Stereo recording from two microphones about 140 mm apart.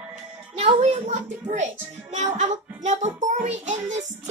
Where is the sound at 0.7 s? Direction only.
60° right (ahead or behind).